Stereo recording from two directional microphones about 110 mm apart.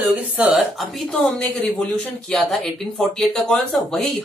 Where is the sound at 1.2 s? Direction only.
15° left (ahead or behind).